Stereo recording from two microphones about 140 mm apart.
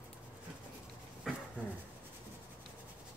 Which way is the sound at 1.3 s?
Centre (ahead or behind).